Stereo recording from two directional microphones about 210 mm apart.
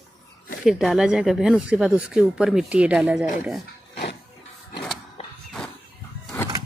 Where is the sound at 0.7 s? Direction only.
5° right (ahead or behind).